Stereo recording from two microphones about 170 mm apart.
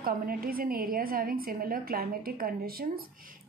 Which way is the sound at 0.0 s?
60° right (ahead or behind).